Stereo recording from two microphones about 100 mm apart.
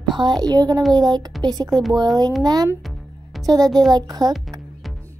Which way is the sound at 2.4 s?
45° right (ahead or behind).